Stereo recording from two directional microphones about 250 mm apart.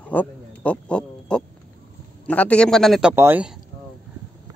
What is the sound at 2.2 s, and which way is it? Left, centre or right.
A man's voice, centre.